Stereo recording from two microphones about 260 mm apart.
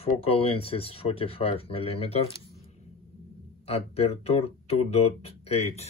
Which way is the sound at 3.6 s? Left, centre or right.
Left.